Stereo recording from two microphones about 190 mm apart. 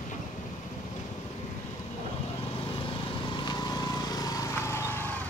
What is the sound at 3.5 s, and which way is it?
Vehicle, 20° left (ahead or behind).